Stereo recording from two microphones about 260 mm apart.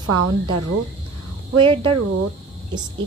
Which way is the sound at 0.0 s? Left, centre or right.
Right.